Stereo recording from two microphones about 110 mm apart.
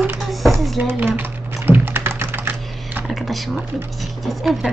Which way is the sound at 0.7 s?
20° right (ahead or behind).